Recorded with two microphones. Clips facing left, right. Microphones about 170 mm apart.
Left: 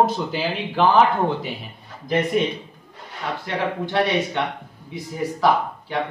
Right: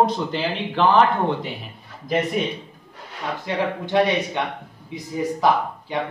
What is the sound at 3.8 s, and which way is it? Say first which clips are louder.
Speech: right 2 dB; 20° right (ahead or behind).